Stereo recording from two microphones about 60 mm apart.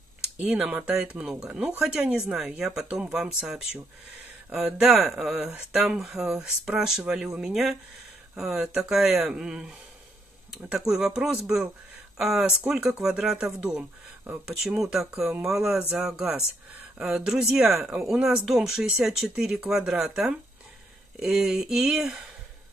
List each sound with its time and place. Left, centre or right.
0.5 s speech: centre